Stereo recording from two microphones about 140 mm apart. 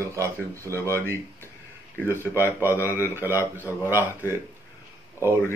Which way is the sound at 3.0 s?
15° right (ahead or behind).